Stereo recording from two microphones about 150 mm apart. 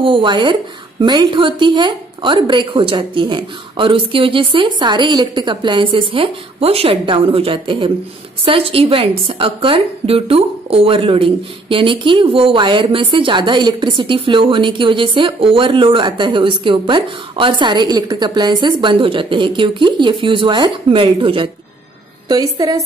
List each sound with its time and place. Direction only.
0.0 s a woman's voice: 35° right (ahead or behind)